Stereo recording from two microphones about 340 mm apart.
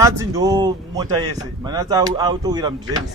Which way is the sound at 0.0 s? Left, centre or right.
Centre.